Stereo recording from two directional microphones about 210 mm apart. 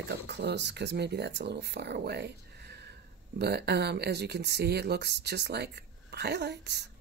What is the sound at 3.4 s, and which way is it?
Speech, 50° right (ahead or behind).